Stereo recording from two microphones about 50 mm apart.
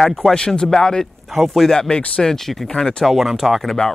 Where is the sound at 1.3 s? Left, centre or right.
Centre.